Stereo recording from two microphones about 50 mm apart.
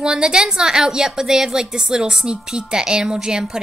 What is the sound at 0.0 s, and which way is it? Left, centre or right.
A woman's voice, centre.